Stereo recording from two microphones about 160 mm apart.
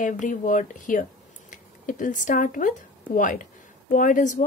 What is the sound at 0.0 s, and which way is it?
A woman's voice, 55° left (ahead or behind).